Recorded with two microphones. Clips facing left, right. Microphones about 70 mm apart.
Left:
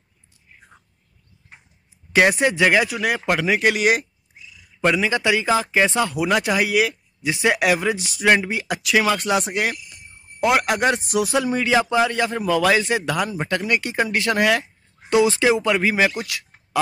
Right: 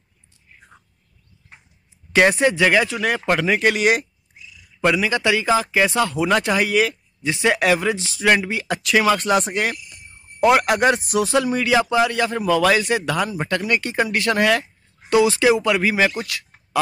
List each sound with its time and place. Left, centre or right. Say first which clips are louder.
0.5 s chewing: even; centre
2.1 s speech: right 1 dB; centre
4.8 s a man's voice: right 1 dB; left
6.2 s a man's voice: even; centre
8.8 s speech: right 2 dB; centre
11.4 s a man's voice: right 1 dB; left